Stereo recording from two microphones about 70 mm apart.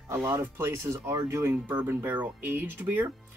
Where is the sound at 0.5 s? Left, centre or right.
Right.